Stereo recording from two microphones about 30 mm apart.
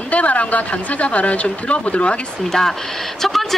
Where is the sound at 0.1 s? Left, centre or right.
Left.